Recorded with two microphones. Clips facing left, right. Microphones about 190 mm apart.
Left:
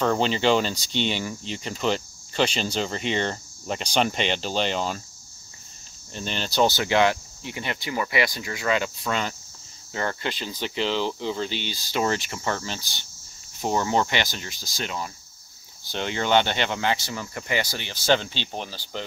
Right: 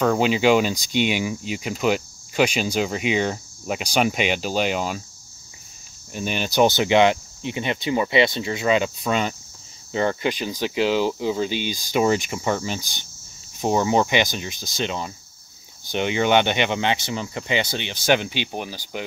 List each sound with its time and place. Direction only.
0.0 s speech: 5° right (ahead or behind)
6.1 s speech: 10° right (ahead or behind)